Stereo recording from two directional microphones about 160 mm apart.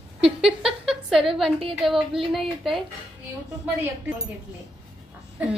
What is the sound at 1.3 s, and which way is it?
Speech, centre (ahead or behind).